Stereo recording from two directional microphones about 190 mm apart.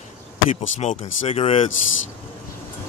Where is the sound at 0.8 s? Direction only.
35° left (ahead or behind).